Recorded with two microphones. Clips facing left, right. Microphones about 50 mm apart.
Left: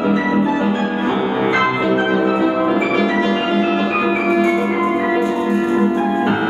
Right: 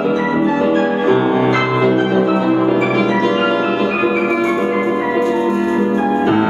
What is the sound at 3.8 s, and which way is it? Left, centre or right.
Music, centre.